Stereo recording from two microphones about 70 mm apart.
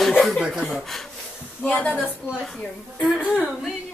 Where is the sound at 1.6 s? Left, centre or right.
Left.